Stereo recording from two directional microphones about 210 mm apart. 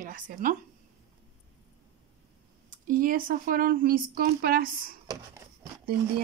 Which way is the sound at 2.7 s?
40° right (ahead or behind).